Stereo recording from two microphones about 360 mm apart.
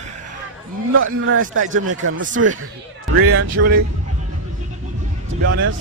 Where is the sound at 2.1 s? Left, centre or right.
Right.